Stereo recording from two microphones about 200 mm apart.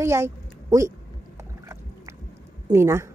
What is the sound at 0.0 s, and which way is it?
Speech, 15° right (ahead or behind).